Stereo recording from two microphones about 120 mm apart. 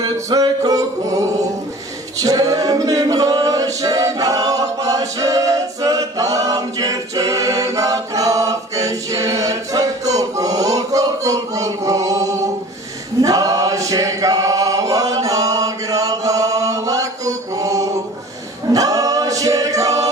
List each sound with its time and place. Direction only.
0.0 s music: 30° right (ahead or behind)
13.2 s choir: 30° right (ahead or behind)
18.7 s music: 30° right (ahead or behind)